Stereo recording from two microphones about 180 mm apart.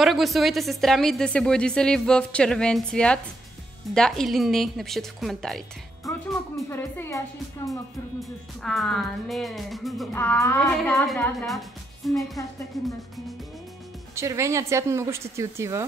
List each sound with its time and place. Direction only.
0.0 s a woman's voice: centre (ahead or behind)
6.0 s music: centre (ahead or behind)
6.7 s speech: 10° left (ahead or behind)
8.2 s a woman's voice: centre (ahead or behind)
10.1 s speech: 15° left (ahead or behind)
10.6 s a woman's voice: centre (ahead or behind)
14.1 s a woman's voice: 15° right (ahead or behind)